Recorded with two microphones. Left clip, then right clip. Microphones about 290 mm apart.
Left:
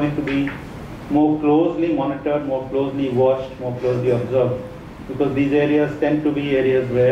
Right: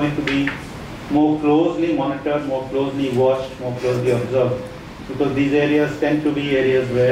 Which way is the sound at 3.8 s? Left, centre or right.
Centre.